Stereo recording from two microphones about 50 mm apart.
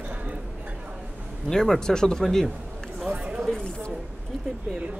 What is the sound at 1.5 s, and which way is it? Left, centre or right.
Speech, centre.